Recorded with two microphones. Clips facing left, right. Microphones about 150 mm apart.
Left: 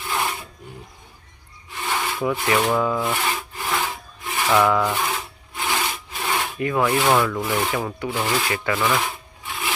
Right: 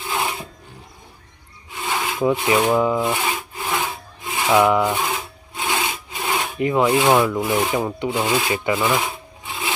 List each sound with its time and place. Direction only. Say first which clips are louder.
0.1 s filing: right 1 dB; 5° right (ahead or behind)
1.8 s rub: right 1 dB; 15° right (ahead or behind)
2.2 s wood: right 4 dB; 20° right (ahead or behind)